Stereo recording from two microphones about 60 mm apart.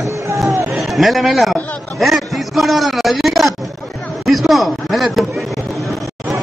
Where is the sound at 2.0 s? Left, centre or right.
Centre.